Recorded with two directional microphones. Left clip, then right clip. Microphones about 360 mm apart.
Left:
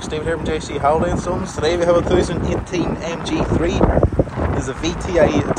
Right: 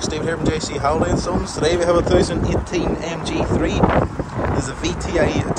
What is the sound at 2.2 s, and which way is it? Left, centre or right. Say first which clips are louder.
Speech: even; right.